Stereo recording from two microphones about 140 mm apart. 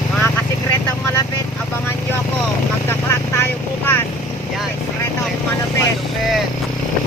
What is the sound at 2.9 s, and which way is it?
Vehicle, 15° left (ahead or behind).